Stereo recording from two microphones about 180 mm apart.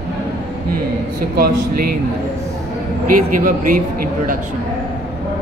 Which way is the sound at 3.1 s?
50° right (ahead or behind).